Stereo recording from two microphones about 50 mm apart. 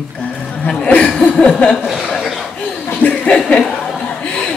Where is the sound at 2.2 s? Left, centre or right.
Centre.